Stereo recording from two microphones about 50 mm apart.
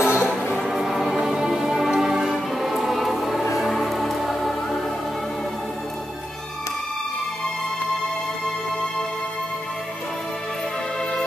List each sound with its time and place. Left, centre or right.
0.0 s music: left
0.3 s music: centre